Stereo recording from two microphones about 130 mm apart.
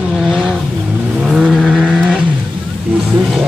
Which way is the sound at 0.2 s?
Centre (ahead or behind).